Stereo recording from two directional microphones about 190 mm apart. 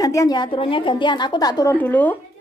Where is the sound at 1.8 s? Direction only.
10° left (ahead or behind).